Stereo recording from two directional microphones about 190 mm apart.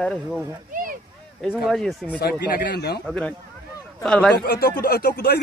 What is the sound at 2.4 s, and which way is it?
Speech, 55° left (ahead or behind).